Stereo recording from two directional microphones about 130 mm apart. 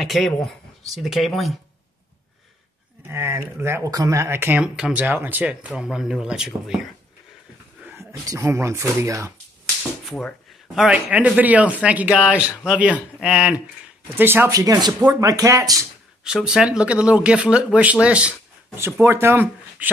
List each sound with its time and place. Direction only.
0.0 s speech: centre (ahead or behind)
3.1 s speech: 20° right (ahead or behind)
7.8 s speech: 20° right (ahead or behind)
10.0 s speech: centre (ahead or behind); by 14.5 s 15° right (ahead or behind)
14.5 s speech: 30° right (ahead or behind)
16.3 s speech: 5° right (ahead or behind)